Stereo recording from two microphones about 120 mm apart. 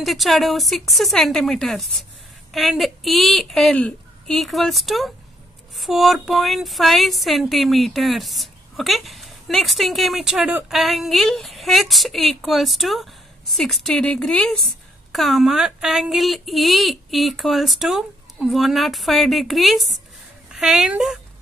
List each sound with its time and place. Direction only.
0.0 s speech: centre (ahead or behind)